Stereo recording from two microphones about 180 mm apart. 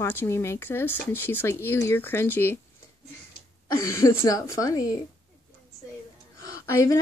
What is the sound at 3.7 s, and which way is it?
Speech, 15° left (ahead or behind).